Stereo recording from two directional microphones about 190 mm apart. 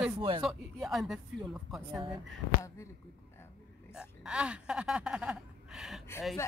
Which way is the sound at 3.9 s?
5° right (ahead or behind).